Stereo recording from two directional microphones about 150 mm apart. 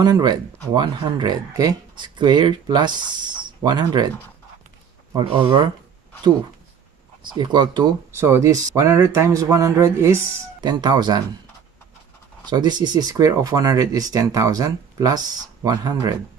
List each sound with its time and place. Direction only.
0.0 s speech: 25° right (ahead or behind)
5.1 s speech: 30° right (ahead or behind)
7.3 s speech: 30° right (ahead or behind)
8.1 s speech: 20° right (ahead or behind)
10.6 s speech: 30° right (ahead or behind)
12.4 s speech: 30° right (ahead or behind)